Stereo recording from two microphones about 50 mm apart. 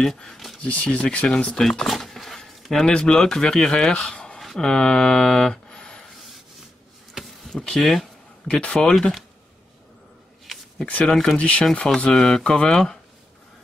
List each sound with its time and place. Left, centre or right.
0.0 s speech: centre
0.6 s speech: left
0.8 s speech: centre
1.6 s a sound: centre
2.8 s speech: centre
7.4 s speech: centre
8.5 s speech: left
8.8 s speech: centre
10.4 s a sound: centre
11.1 s speech: centre
11.3 s speech: left
12.1 s speech: centre